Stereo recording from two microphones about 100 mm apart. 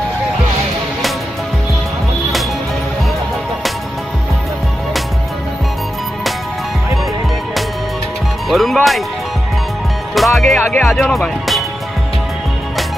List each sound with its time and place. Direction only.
8.5 s speech: centre (ahead or behind)
10.1 s speech: centre (ahead or behind)
10.6 s speech: 20° left (ahead or behind)
11.0 s speech: centre (ahead or behind)